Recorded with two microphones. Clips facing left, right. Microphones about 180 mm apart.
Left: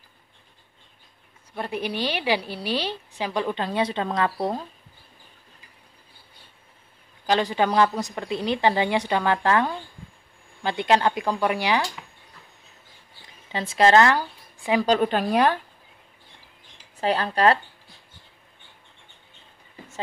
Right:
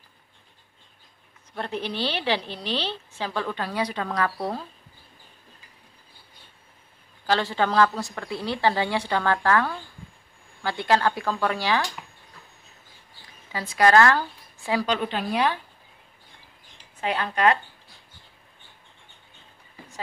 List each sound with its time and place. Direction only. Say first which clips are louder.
1.5 s a woman's voice: left 2 dB; 10° left (ahead or behind)
7.2 s a woman's voice: left 2 dB; 15° left (ahead or behind)
13.5 s a woman's voice: left 2 dB; 25° left (ahead or behind)
14.9 s a woman's voice: left 5 dB; 45° left (ahead or behind)
17.0 s speech: left 2 dB; 35° left (ahead or behind)